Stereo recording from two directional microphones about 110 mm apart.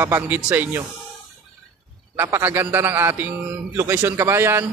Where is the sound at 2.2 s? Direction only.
20° right (ahead or behind).